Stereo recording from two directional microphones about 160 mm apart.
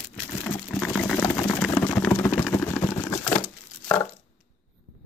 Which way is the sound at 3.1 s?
20° left (ahead or behind).